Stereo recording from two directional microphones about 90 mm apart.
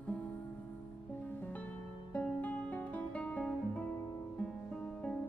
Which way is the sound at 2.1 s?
20° left (ahead or behind).